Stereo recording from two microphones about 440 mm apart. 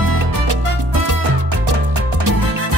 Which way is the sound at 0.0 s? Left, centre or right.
Right.